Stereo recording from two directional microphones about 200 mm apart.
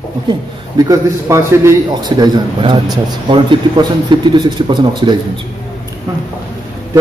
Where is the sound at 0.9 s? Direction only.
15° right (ahead or behind).